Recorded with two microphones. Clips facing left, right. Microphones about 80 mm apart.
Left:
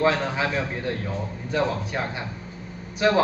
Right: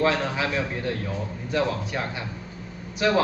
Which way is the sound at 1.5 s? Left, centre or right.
Left.